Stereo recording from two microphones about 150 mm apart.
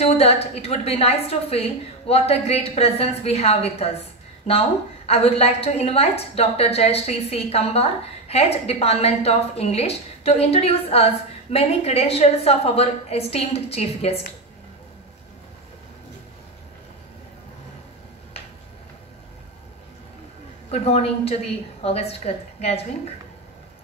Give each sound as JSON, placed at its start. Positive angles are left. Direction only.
{"t": 0.0, "sound": "a woman's voice", "side_deg": 45}
{"t": 20.7, "sound": "a woman's voice", "side_deg": 45}